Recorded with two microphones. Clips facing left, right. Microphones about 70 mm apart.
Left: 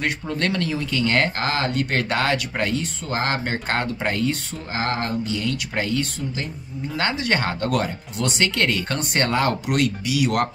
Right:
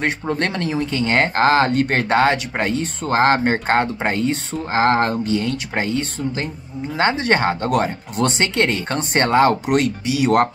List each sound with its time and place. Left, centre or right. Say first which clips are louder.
0.0 s speech: right 3 dB; right
4.8 s speech: right 7 dB; right